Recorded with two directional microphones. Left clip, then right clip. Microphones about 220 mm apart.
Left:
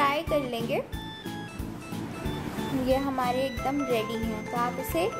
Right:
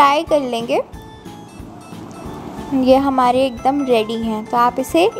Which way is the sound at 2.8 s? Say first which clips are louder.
Right 14 dB; 35° right (ahead or behind).